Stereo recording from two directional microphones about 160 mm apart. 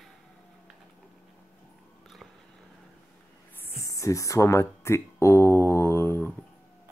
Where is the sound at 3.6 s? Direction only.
20° left (ahead or behind).